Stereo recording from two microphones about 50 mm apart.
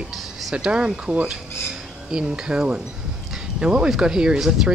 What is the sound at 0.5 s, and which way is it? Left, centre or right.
Speech, right.